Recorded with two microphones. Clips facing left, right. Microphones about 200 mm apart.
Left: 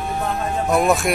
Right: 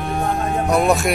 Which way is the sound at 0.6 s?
Centre (ahead or behind).